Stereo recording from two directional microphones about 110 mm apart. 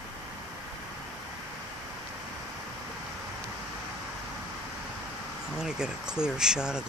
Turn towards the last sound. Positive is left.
turn(degrees=-5)  # may be behind; listen again after turning